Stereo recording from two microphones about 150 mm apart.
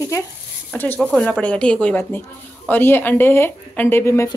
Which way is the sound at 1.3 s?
10° left (ahead or behind).